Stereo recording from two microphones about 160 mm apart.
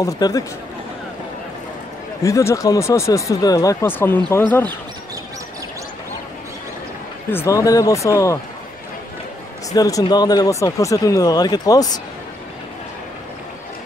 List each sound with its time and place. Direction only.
0.0 s speech: 20° left (ahead or behind)
2.2 s speech: 20° left (ahead or behind)
7.2 s speech: 15° left (ahead or behind)
9.7 s speech: 20° left (ahead or behind)